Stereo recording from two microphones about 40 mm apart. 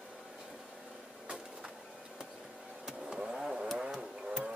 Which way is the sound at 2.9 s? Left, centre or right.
Centre.